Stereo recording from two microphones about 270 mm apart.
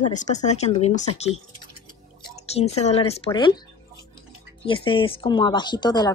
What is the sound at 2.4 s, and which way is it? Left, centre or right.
A woman's voice, left.